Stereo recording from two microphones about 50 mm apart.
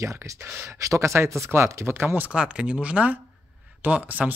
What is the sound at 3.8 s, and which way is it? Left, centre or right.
Speech, right.